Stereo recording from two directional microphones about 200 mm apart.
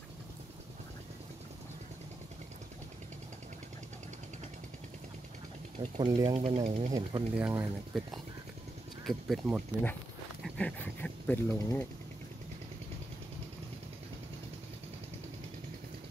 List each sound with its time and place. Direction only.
5.8 s speech: 20° right (ahead or behind)
6.9 s speech: 20° right (ahead or behind)
7.3 s speech: 5° right (ahead or behind)
10.4 s speech: 5° left (ahead or behind)